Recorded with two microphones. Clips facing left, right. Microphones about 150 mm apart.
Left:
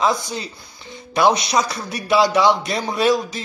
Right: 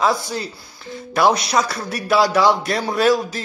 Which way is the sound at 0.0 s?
Centre (ahead or behind).